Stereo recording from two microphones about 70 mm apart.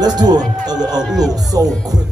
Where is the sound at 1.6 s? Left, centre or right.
Right.